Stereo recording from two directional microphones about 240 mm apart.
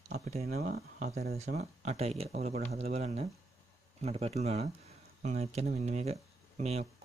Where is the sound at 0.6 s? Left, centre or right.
Right.